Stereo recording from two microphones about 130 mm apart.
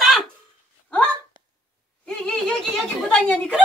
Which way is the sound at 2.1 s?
5° left (ahead or behind).